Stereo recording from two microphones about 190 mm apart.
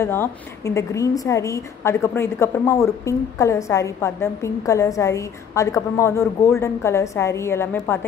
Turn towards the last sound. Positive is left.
turn(degrees=10)  # may be behind; listen again after turning